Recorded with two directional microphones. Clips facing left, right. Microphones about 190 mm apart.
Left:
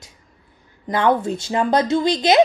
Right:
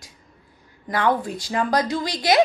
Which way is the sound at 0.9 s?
25° left (ahead or behind).